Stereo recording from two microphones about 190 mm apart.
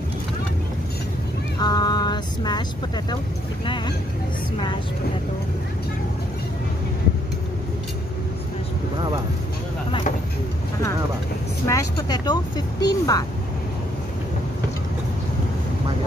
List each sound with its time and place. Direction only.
1.6 s music: 20° left (ahead or behind)
3.6 s speech: 25° left (ahead or behind)
11.6 s speech: 15° left (ahead or behind)